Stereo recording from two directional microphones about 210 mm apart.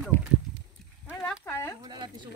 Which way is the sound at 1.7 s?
20° right (ahead or behind).